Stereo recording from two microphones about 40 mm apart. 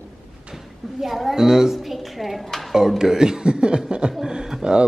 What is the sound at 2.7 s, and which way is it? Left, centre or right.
A man's voice, centre.